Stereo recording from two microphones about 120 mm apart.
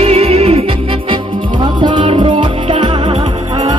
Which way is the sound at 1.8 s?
45° right (ahead or behind).